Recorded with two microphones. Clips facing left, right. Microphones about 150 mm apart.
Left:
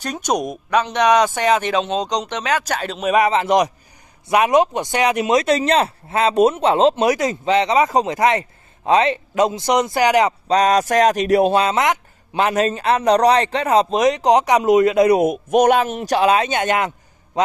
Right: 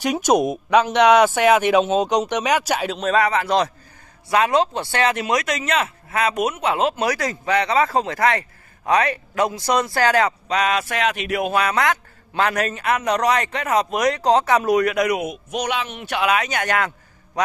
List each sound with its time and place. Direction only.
0.0 s speech: 10° right (ahead or behind)
3.0 s a man's voice: 15° left (ahead or behind)
10.5 s a man's voice: 40° left (ahead or behind)
15.2 s speech: 50° left (ahead or behind); by 16.9 s 20° left (ahead or behind)